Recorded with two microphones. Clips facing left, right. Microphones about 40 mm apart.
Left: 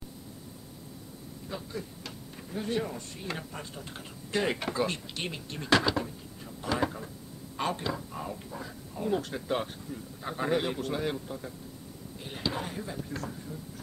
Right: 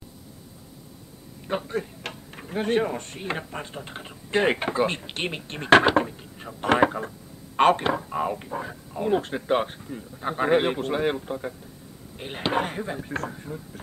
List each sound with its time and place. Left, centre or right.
1.5 s speech: right